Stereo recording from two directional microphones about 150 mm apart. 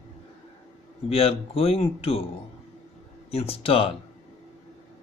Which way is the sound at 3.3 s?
40° left (ahead or behind).